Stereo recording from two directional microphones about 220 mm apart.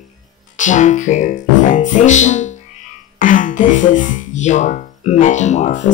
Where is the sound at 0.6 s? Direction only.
35° left (ahead or behind).